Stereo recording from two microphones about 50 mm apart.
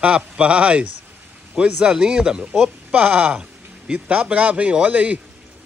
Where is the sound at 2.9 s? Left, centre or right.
Right.